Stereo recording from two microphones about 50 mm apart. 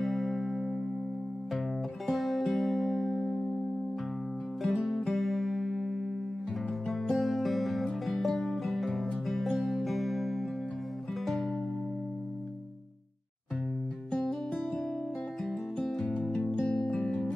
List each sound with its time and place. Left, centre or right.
0.0 s music: centre
2.0 s music: centre
4.6 s music: centre
16.3 s music: centre
16.6 s music: left
16.9 s music: centre